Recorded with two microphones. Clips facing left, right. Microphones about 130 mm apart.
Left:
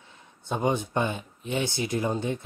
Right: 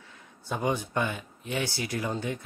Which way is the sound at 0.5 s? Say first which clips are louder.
Left 3 dB; 25° left (ahead or behind).